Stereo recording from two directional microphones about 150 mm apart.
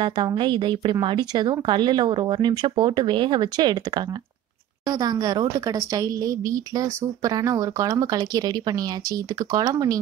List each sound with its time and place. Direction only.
0.0 s a woman's voice: 30° right (ahead or behind)